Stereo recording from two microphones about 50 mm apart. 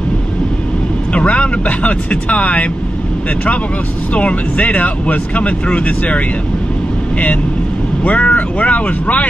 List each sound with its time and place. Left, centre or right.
1.1 s speech: left
4.1 s speech: left
8.0 s speech: left